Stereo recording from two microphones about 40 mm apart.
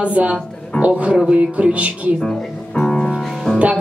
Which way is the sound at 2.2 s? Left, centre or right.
Left.